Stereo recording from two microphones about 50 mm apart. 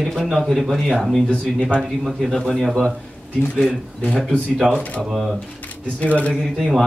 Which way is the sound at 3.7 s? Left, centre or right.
Centre.